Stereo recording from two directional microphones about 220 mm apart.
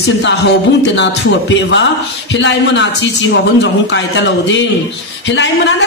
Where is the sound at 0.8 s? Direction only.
55° left (ahead or behind).